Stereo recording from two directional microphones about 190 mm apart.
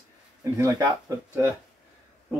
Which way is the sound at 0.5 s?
15° right (ahead or behind).